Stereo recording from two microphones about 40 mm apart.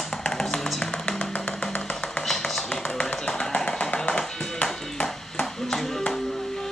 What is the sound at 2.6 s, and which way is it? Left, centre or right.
Music, left.